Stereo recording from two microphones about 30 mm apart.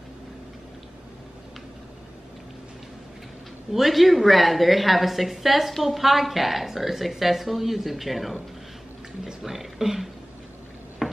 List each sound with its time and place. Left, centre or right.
3.7 s a woman's voice: centre
9.4 s speech: centre
11.0 s a sound: centre